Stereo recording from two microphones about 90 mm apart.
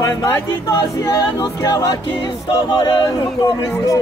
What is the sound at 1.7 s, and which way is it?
Speech, 50° left (ahead or behind).